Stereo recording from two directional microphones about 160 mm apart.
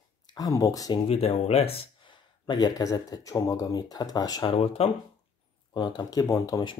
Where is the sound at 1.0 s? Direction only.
40° left (ahead or behind); by 6.7 s 20° left (ahead or behind).